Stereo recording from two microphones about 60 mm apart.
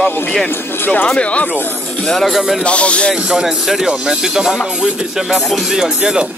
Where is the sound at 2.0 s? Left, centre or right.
Centre.